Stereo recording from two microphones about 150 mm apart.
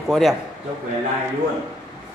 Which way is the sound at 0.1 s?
Centre (ahead or behind).